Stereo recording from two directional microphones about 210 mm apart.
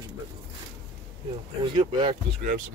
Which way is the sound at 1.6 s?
20° right (ahead or behind).